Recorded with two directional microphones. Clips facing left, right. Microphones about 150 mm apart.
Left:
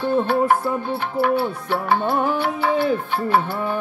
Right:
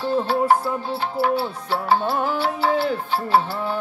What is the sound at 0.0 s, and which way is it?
Music, 55° left (ahead or behind).